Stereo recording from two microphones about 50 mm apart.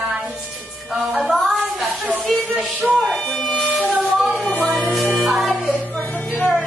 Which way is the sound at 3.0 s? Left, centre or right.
Centre.